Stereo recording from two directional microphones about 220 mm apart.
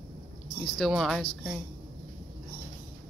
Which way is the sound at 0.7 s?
Centre (ahead or behind).